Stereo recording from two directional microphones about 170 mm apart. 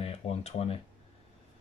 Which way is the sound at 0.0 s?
35° left (ahead or behind).